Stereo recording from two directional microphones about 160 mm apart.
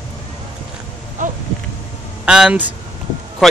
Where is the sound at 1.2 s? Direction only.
55° right (ahead or behind).